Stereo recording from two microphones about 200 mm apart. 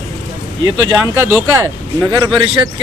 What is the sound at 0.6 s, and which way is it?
Speech, 10° right (ahead or behind).